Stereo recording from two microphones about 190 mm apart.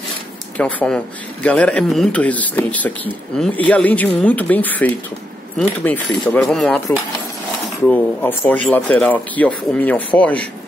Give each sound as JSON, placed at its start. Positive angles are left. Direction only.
{"t": 0.6, "sound": "speech", "side_deg": 5}